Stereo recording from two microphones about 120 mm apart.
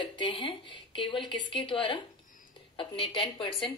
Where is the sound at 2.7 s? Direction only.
45° left (ahead or behind).